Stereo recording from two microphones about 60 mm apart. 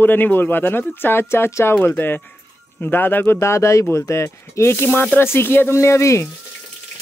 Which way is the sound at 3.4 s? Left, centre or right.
Left.